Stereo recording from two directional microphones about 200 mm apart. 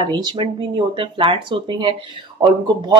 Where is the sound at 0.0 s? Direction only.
20° right (ahead or behind).